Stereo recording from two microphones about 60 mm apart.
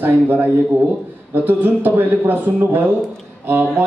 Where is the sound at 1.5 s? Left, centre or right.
Right.